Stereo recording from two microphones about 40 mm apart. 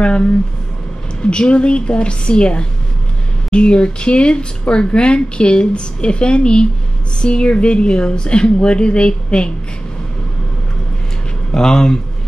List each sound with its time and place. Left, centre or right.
1.3 s speech: left
11.5 s speech: centre